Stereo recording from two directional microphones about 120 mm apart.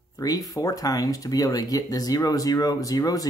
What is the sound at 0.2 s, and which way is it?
Speech, 30° left (ahead or behind).